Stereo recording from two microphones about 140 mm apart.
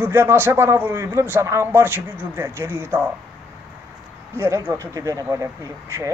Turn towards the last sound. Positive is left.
turn(degrees=-20)  # may be behind; listen again after turning